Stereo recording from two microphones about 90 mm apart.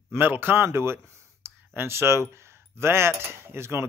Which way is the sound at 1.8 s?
30° right (ahead or behind).